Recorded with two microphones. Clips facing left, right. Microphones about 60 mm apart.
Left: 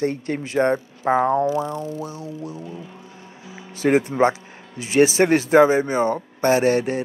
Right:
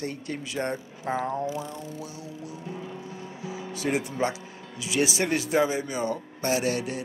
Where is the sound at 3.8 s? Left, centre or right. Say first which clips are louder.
Left 10 dB; left.